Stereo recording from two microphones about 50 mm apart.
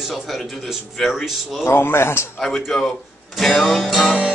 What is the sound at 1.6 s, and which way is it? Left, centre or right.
Speech, left.